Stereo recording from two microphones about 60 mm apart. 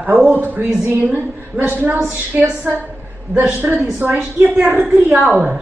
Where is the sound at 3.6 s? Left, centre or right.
Right.